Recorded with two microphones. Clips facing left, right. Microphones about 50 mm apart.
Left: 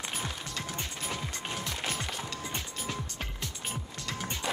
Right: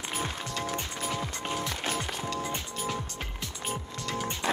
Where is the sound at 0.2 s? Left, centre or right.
Right.